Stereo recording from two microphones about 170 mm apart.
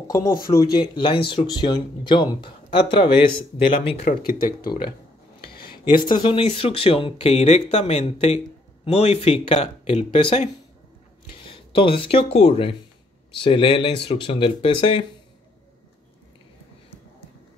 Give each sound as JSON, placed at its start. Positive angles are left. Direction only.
{"t": 0.3, "sound": "speech", "side_deg": 60}
{"t": 0.7, "sound": "speech", "side_deg": 30}
{"t": 5.9, "sound": "speech", "side_deg": 30}